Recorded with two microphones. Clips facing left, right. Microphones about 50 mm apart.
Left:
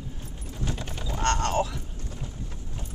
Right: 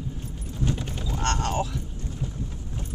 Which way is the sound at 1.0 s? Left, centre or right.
Centre.